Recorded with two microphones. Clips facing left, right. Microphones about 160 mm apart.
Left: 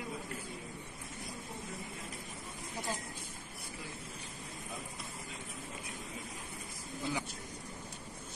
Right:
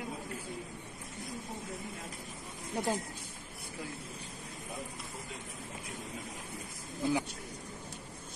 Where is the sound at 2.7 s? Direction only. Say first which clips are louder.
Right 7 dB; 60° right (ahead or behind).